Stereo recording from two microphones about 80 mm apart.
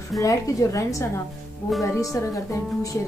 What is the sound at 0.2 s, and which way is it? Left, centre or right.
Speech, left.